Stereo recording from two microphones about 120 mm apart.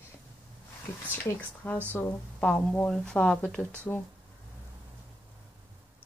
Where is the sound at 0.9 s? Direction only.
20° left (ahead or behind).